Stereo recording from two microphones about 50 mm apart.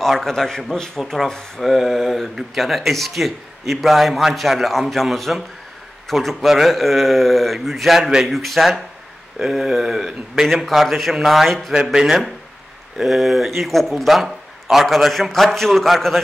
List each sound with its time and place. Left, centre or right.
0.0 s a man's voice: centre
11.7 s a man's voice: centre